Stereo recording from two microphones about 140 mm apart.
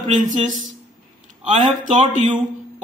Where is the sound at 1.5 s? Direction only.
60° right (ahead or behind).